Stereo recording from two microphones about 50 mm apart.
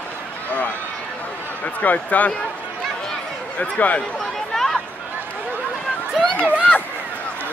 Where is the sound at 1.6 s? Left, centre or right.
Left.